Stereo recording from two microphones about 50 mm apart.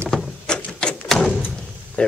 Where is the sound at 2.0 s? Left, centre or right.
Left.